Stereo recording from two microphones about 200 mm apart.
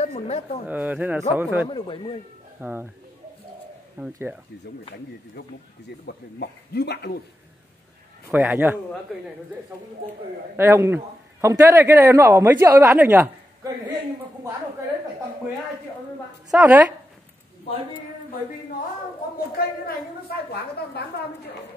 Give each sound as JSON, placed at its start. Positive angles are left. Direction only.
{"t": 0.0, "sound": "a sound", "side_deg": 35}
{"t": 0.7, "sound": "a woman's voice", "side_deg": -10}
{"t": 1.7, "sound": "speech", "side_deg": 25}
{"t": 2.6, "sound": "a woman's voice", "side_deg": -10}
{"t": 4.0, "sound": "a woman's voice", "side_deg": -5}
{"t": 6.0, "sound": "speech", "side_deg": 55}
{"t": 8.3, "sound": "a woman's voice", "side_deg": -10}
{"t": 10.5, "sound": "a woman's voice", "side_deg": -10}
{"t": 16.5, "sound": "a woman's voice", "side_deg": -5}